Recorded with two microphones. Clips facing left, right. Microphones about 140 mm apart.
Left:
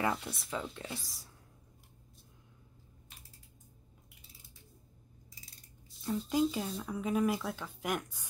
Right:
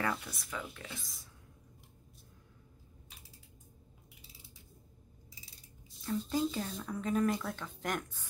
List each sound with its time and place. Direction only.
0.0 s speech: 25° left (ahead or behind)
6.0 s speech: 15° left (ahead or behind)
6.4 s speech: centre (ahead or behind)